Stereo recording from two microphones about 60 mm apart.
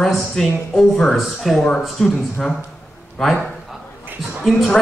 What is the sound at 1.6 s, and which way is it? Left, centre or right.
Speech, centre.